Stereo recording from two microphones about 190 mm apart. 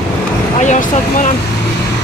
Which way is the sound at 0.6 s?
40° left (ahead or behind).